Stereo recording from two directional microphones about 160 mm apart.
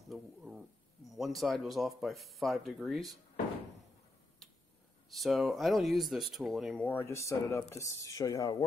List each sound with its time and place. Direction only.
0.1 s speech: 5° right (ahead or behind)
5.1 s speech: centre (ahead or behind)
6.9 s speech: 15° left (ahead or behind)